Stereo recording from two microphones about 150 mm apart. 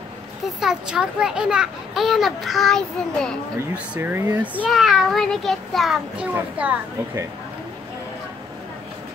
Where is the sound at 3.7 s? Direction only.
10° right (ahead or behind).